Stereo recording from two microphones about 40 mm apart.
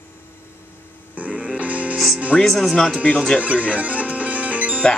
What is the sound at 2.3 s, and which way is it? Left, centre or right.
Speech, centre.